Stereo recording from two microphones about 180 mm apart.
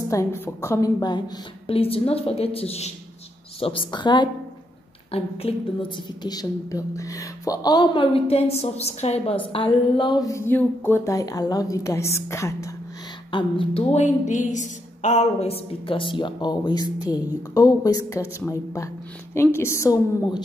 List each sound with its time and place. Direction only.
0.1 s a woman's voice: 15° left (ahead or behind)
1.7 s a woman's voice: 30° left (ahead or behind); by 12.7 s 15° left (ahead or behind)
13.3 s a woman's voice: 25° left (ahead or behind)
19.3 s a woman's voice: 15° left (ahead or behind)